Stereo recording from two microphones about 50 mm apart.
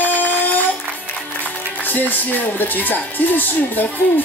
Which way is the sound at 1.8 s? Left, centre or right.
Left.